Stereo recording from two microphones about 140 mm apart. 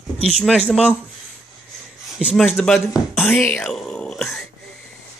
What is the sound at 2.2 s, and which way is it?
Speech, 10° right (ahead or behind).